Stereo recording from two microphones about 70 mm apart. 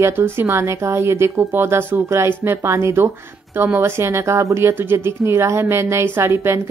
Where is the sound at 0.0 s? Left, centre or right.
Right.